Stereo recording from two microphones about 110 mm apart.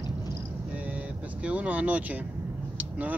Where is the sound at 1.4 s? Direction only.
15° right (ahead or behind).